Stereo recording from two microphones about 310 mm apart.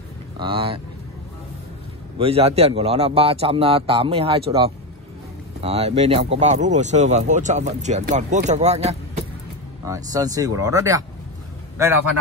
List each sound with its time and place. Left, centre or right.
0.4 s speech: centre
2.1 s speech: centre